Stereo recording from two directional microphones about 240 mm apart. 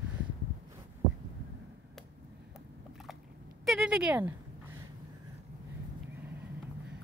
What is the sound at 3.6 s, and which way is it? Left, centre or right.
Speech, centre.